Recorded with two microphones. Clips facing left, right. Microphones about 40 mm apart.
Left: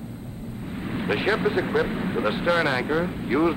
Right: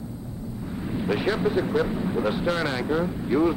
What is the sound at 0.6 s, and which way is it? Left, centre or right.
Speech, left.